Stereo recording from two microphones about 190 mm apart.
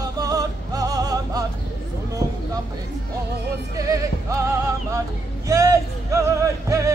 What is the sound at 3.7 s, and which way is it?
Music, 15° right (ahead or behind).